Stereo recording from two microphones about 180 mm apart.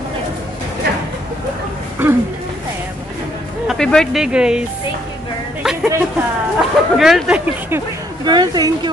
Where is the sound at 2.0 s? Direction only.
10° right (ahead or behind).